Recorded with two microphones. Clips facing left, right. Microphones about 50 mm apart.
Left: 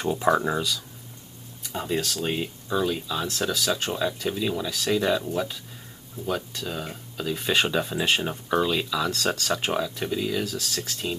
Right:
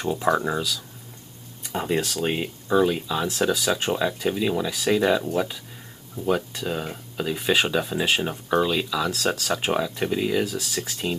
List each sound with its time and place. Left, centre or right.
0.0 s speech: centre
1.6 s speech: right